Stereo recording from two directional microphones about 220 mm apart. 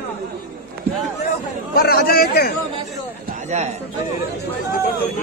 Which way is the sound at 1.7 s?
45° left (ahead or behind).